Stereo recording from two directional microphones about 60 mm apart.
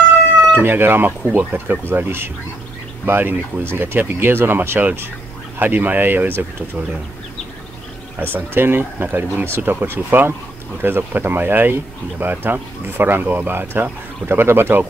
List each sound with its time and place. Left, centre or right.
0.5 s speech: right
8.2 s speech: right